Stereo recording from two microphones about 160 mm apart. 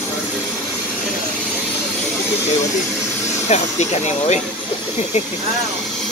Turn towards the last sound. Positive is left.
turn(degrees=45)  # may be behind; listen again after turning